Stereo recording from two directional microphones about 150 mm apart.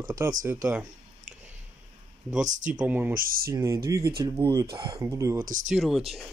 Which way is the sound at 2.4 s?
55° right (ahead or behind).